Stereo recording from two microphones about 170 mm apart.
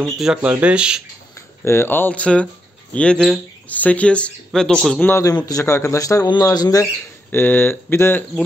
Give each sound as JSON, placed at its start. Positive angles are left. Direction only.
{"t": 0.0, "sound": "speech", "side_deg": -5}
{"t": 1.6, "sound": "speech", "side_deg": 15}
{"t": 5.1, "sound": "speech", "side_deg": 20}